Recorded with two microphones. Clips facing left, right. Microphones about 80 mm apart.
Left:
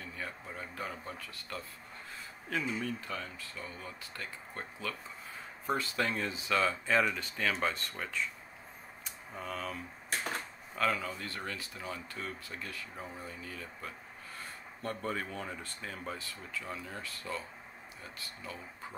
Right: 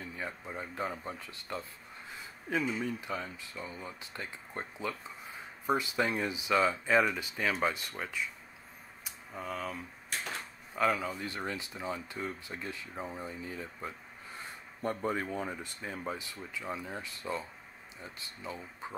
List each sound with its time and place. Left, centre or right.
0.0 s speech: centre
9.0 s a sound: centre
10.8 s speech: centre